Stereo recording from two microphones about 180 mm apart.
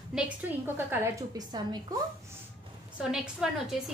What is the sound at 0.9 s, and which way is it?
A woman's voice, 20° right (ahead or behind).